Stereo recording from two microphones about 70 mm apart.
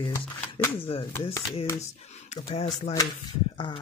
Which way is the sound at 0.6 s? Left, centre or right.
Left.